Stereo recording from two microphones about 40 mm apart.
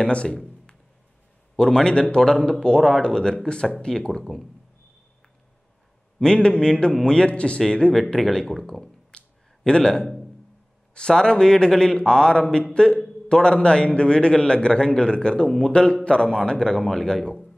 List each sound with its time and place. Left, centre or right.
0.0 s a man's voice: left
1.6 s a man's voice: centre
2.3 s a man's voice: centre
4.2 s speech: centre
6.2 s a man's voice: left
7.2 s a man's voice: left
7.9 s speech: centre
9.1 s a sound: left
11.0 s a man's voice: left
15.4 s speech: centre
15.7 s a man's voice: left